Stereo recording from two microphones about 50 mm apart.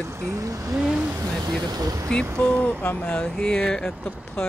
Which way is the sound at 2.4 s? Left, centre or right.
Left.